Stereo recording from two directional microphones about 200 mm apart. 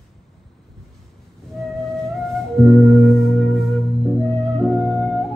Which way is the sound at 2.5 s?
Centre (ahead or behind).